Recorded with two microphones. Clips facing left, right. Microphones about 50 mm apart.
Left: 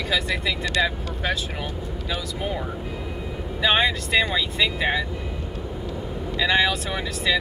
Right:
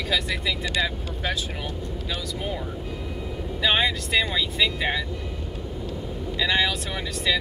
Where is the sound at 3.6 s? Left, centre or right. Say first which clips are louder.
Left 2 dB; centre.